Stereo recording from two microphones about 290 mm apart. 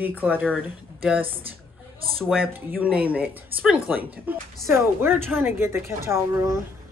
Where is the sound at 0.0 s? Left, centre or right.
Centre.